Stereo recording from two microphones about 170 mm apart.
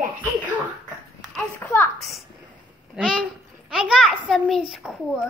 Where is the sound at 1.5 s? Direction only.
10° left (ahead or behind).